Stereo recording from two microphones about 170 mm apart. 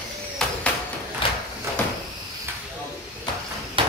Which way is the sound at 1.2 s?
30° left (ahead or behind).